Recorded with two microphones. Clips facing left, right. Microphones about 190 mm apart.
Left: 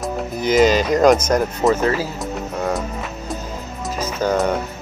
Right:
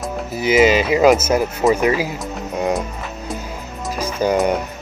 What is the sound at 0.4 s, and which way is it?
Speech, 5° right (ahead or behind).